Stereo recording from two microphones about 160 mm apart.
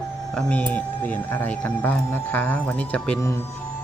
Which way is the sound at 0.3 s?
5° left (ahead or behind).